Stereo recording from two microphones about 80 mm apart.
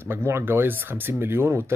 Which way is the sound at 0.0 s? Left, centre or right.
Right.